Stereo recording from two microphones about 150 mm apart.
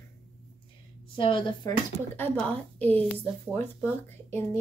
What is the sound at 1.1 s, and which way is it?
Speech, 35° left (ahead or behind).